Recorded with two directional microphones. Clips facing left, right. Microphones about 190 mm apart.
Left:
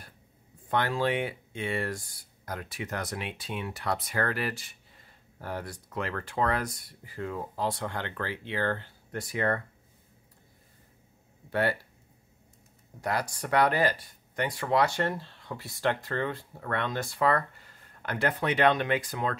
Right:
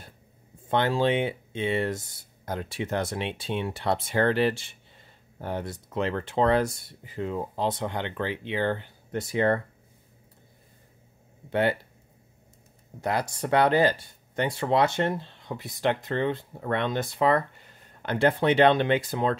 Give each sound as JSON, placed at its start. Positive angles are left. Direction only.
{"t": 0.7, "sound": "speech", "side_deg": -25}
{"t": 13.0, "sound": "speech", "side_deg": -25}